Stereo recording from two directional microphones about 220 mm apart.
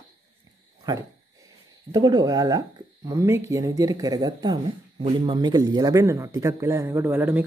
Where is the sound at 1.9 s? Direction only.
20° right (ahead or behind).